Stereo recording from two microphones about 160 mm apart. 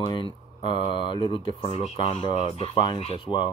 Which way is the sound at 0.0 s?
30° left (ahead or behind).